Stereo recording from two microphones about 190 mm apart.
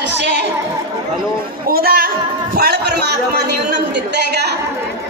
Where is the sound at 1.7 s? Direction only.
50° right (ahead or behind).